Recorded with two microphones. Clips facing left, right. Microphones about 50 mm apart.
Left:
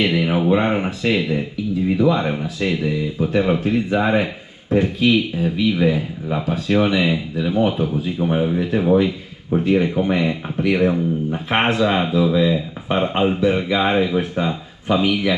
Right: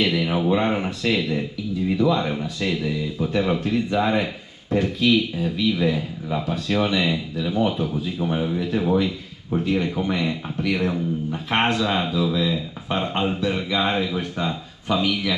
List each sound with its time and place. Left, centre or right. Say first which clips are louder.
0.0 s speech: left 3 dB; centre